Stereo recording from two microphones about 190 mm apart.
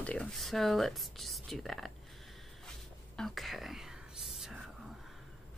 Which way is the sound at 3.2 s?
Centre (ahead or behind).